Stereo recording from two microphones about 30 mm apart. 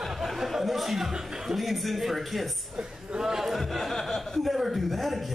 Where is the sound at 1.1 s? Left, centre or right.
Right.